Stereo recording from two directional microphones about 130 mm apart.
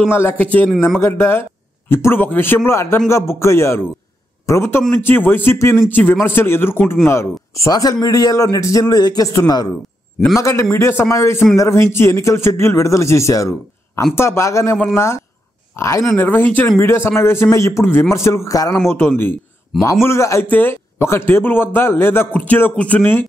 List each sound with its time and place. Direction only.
0.1 s a man's voice: 20° left (ahead or behind)
0.7 s a man's voice: 5° left (ahead or behind)
0.9 s a man's voice: 15° left (ahead or behind)